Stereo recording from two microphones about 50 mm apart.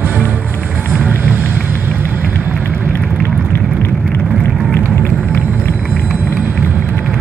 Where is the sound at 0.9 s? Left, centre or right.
Right.